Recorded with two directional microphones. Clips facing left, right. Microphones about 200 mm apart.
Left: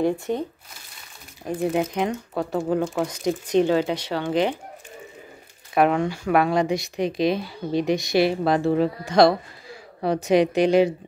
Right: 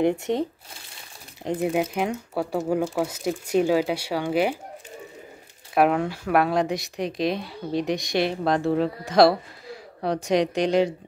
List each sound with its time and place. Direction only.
1.4 s speech: 20° right (ahead or behind)
1.7 s speech: 5° right (ahead or behind)
5.8 s speech: 5° right (ahead or behind)